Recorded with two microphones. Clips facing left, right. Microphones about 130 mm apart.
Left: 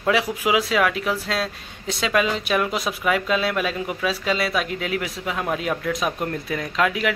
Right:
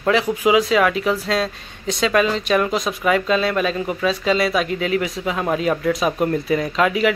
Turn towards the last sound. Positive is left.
turn(degrees=0)  # may be behind; listen again after turning